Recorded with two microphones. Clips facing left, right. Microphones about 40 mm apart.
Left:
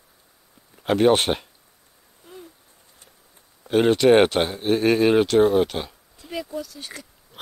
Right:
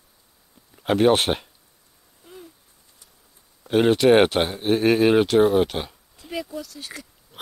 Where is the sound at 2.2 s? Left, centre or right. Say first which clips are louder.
Left 1 dB; centre.